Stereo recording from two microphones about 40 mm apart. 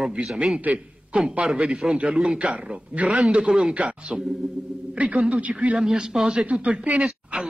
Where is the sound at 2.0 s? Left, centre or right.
Right.